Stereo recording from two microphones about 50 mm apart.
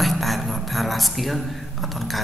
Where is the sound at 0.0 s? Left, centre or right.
Centre.